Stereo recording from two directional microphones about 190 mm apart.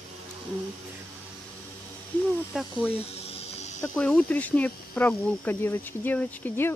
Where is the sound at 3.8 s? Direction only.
5° left (ahead or behind).